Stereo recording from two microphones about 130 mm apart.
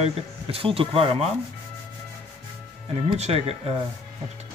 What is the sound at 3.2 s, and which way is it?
Speech, 50° right (ahead or behind).